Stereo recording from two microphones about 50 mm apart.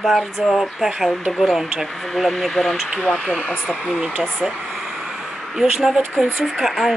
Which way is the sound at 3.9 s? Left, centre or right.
Centre.